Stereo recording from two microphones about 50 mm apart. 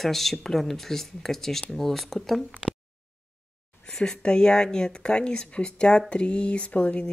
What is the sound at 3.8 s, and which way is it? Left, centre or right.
Speech, centre.